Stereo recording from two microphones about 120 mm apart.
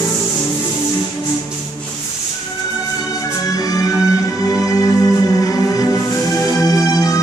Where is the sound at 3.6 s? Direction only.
30° left (ahead or behind).